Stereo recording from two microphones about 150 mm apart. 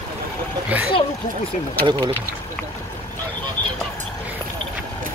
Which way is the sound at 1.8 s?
30° right (ahead or behind).